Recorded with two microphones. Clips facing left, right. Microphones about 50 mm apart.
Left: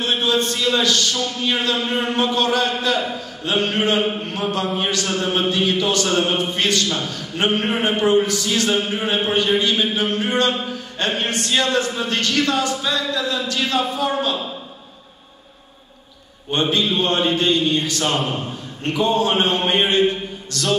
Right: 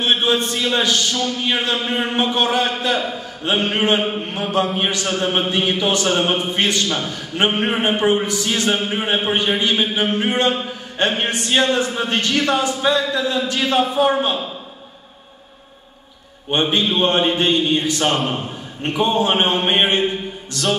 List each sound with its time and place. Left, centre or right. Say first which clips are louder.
0.0 s a man's voice: right 2 dB; right
16.7 s speech: right 3 dB; right